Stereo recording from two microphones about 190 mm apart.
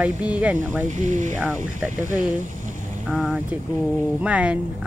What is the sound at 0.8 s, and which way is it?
Speech, 40° right (ahead or behind).